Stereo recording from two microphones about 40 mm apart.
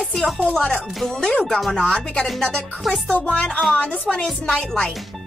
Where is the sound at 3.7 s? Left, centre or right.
Left.